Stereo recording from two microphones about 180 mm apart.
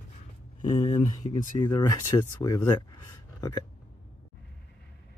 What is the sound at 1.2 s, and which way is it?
Speech, 45° left (ahead or behind).